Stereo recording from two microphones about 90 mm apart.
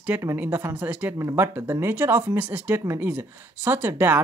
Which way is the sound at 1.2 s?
30° right (ahead or behind).